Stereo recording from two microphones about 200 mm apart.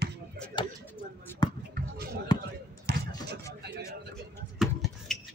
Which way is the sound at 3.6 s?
55° right (ahead or behind).